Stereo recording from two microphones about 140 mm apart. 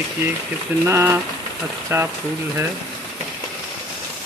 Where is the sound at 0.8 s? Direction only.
15° right (ahead or behind).